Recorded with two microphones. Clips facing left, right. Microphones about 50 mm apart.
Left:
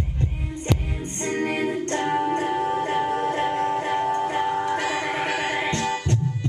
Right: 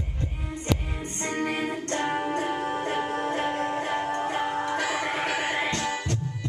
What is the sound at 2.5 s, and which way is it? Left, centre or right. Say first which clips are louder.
Music: left 5 dB; centre.